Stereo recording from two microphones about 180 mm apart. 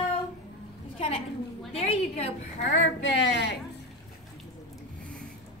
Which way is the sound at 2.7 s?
75° left (ahead or behind).